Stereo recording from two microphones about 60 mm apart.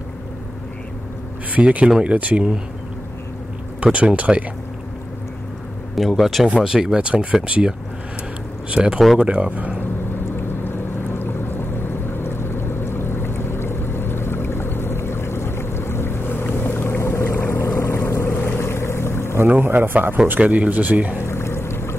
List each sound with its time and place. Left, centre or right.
1.5 s speech: right
3.8 s speech: right
5.9 s speech: centre
6.6 s speech: centre
10.3 s a sound: left
18.6 s boat: left
19.3 s a man's voice: right
21.2 s boat: left